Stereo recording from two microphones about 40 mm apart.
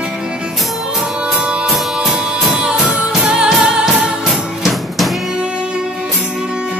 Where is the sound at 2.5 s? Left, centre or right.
Centre.